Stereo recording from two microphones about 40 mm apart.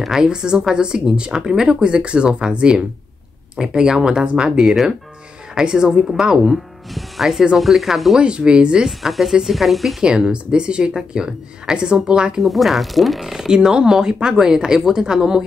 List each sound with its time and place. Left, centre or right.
0.2 s speech: centre
4.2 s speech: right
5.5 s speech: centre
6.5 s a woman's voice: centre
8.2 s speech: right
8.8 s a woman's voice: centre
10.0 s speech: right
12.4 s a woman's voice: centre
13.3 s speech: centre